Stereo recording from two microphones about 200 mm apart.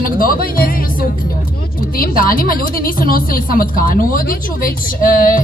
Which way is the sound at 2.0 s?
45° left (ahead or behind).